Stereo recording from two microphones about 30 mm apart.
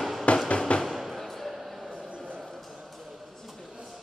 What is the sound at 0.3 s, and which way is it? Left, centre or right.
Music, left.